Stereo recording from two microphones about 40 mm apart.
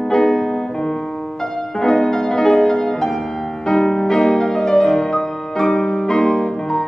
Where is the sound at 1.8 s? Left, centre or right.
Centre.